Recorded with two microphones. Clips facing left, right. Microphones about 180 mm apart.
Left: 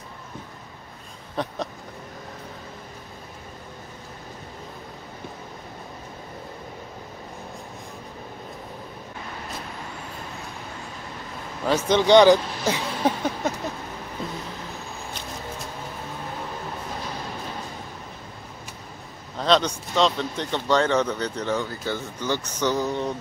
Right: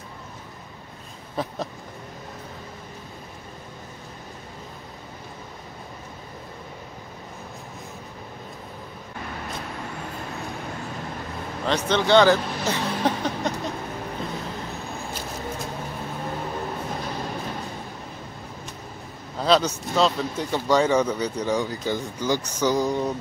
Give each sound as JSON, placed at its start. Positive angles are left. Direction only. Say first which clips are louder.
{"t": 1.3, "sound": "a sound", "louder": "even", "side_deg": -5}
{"t": 11.6, "sound": "speech", "louder": "left 3 dB", "side_deg": 10}
{"t": 19.3, "sound": "speech", "louder": "right 1 dB", "side_deg": -5}